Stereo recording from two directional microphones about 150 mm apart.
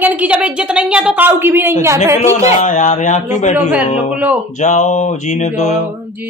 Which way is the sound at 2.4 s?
55° left (ahead or behind).